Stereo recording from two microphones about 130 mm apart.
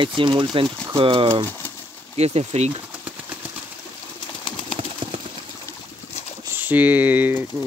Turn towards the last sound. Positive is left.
turn(degrees=-15)  # may be behind; listen again after turning